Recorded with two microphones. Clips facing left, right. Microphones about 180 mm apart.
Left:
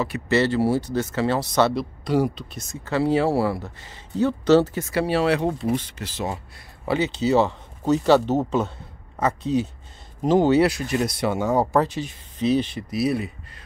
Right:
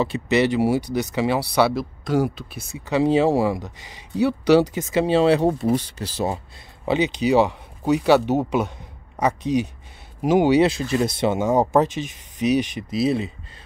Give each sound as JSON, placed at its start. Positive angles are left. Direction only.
{"t": 0.0, "sound": "speech", "side_deg": -20}
{"t": 6.9, "sound": "speech", "side_deg": -15}